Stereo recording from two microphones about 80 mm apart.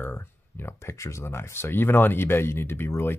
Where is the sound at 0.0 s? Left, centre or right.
Left.